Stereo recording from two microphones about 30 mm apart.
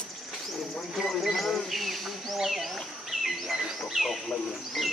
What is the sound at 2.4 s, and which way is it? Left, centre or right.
Speech, centre.